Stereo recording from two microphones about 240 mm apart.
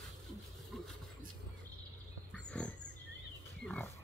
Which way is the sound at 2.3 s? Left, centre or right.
Centre.